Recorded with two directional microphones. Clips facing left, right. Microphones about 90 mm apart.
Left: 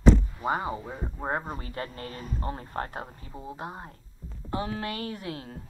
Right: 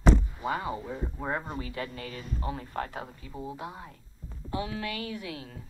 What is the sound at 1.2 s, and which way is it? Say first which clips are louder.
Speech: left 3 dB; 45° left (ahead or behind).